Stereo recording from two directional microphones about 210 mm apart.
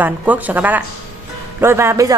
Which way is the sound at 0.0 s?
10° right (ahead or behind).